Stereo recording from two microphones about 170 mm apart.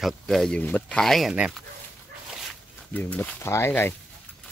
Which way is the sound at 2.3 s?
Centre (ahead or behind).